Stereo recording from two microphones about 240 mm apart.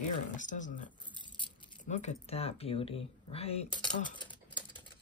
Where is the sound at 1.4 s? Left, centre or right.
Left.